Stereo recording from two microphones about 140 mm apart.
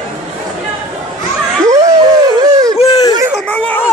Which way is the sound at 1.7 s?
25° right (ahead or behind).